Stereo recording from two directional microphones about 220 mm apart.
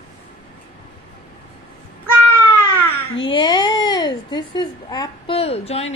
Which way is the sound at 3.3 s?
20° left (ahead or behind).